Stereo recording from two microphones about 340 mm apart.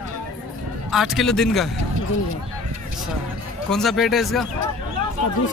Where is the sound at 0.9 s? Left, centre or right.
Centre.